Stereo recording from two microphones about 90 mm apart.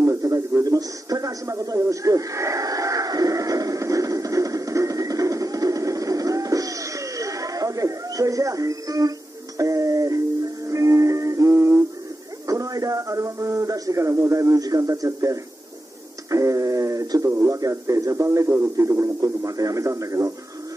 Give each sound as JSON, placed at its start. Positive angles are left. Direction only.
{"t": 0.0, "sound": "radio", "side_deg": -35}
{"t": 9.6, "sound": "music", "side_deg": -40}
{"t": 12.4, "sound": "a sound", "side_deg": -40}
{"t": 17.5, "sound": "speech", "side_deg": -35}